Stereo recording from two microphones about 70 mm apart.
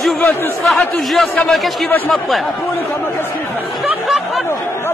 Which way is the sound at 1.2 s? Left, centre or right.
Left.